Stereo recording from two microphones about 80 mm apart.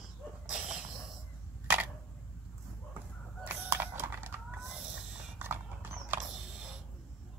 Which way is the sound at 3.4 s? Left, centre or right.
Right.